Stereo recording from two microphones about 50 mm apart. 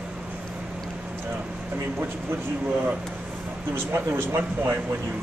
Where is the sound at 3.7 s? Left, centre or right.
Right.